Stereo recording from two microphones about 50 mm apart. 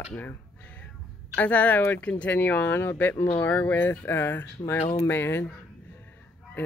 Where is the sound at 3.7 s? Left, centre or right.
Left.